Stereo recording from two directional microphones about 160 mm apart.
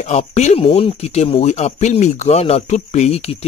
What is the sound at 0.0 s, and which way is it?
Speech, 45° left (ahead or behind).